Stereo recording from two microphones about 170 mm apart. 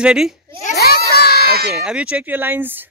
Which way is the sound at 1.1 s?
70° left (ahead or behind).